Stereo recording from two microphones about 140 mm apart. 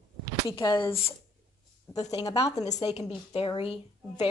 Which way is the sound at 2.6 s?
50° left (ahead or behind).